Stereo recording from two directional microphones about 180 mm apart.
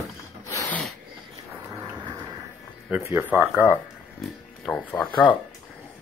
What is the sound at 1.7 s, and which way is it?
Thunder, 15° right (ahead or behind).